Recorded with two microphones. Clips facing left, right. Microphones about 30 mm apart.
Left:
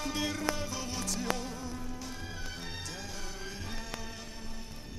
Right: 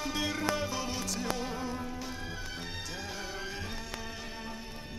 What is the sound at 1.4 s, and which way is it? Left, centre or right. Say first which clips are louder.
Music: right 4 dB; right.